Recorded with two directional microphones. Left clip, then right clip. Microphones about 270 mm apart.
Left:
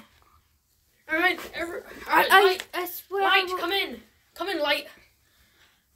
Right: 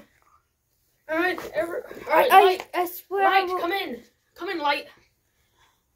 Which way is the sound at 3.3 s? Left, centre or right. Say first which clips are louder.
Right 1 dB; left.